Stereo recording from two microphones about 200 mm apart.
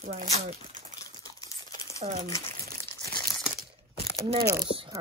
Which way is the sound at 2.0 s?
30° right (ahead or behind).